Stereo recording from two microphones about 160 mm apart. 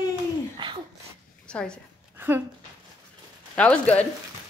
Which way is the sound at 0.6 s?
30° right (ahead or behind).